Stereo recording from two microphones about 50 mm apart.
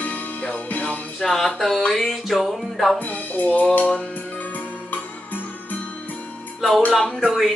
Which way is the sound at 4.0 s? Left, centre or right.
Left.